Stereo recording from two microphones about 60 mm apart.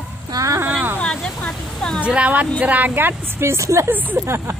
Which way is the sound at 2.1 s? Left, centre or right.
Right.